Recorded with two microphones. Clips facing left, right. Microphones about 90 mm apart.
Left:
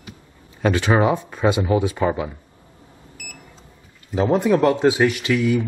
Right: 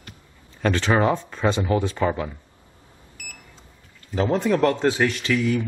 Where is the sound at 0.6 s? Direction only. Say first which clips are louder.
Left 2 dB; 10° left (ahead or behind).